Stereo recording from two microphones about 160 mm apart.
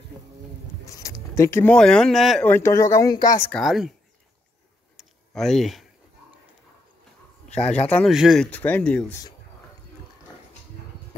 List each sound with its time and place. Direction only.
0.8 s speech: 20° left (ahead or behind); by 2.5 s centre (ahead or behind)
2.5 s speech: 15° left (ahead or behind)
3.6 s speech: centre (ahead or behind)
4.9 s a sound: centre (ahead or behind)
7.5 s speech: 5° left (ahead or behind)
8.1 s speech: centre (ahead or behind)
8.5 s speech: 10° left (ahead or behind)